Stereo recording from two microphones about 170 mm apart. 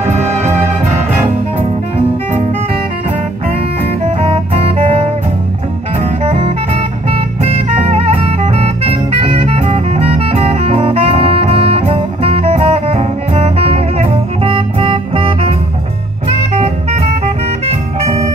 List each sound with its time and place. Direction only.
4.2 s saxophone: 35° right (ahead or behind)
6.2 s music: 35° right (ahead or behind)
16.3 s jazz: 40° right (ahead or behind)
17.6 s music: 40° right (ahead or behind)